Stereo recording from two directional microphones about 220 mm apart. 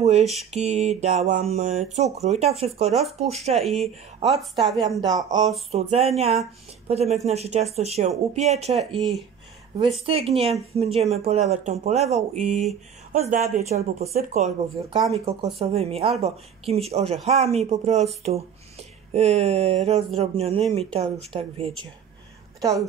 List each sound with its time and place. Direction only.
0.2 s speech: centre (ahead or behind)
0.5 s speech: 30° right (ahead or behind)
2.9 s speech: centre (ahead or behind)
3.2 s speech: 30° right (ahead or behind)
4.6 s speech: centre (ahead or behind)
5.0 s speech: 20° right (ahead or behind)
8.9 s speech: centre (ahead or behind)
10.0 s speech: 25° right (ahead or behind)
22.6 s a woman's voice: 15° right (ahead or behind)